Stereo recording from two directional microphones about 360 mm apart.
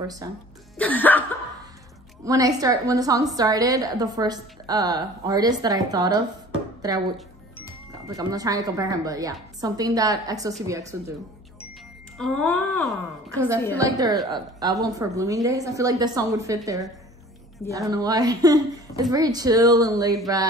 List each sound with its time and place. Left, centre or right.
0.0 s a woman's voice: centre
0.7 s speech: centre
2.2 s a woman's voice: centre
8.2 s a woman's voice: centre
12.2 s a woman's voice: centre